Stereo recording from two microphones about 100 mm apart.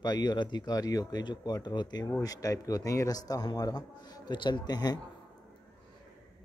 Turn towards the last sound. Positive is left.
turn(degrees=40)  # may be behind; listen again after turning